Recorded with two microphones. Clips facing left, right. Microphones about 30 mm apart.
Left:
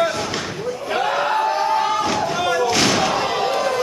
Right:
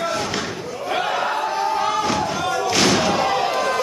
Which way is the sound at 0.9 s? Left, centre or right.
Centre.